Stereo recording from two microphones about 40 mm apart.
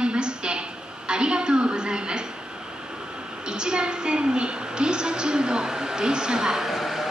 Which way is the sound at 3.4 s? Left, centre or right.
Right.